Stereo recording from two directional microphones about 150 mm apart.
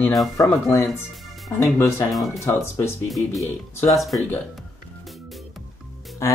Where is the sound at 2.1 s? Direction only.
Centre (ahead or behind).